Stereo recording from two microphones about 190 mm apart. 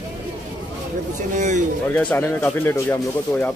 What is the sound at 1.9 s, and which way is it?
Speech, 10° left (ahead or behind).